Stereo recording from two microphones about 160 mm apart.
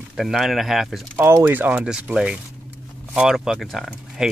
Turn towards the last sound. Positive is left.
turn(degrees=0)  # may be behind; listen again after turning